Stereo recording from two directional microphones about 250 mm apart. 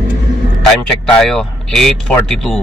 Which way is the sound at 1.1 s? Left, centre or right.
Centre.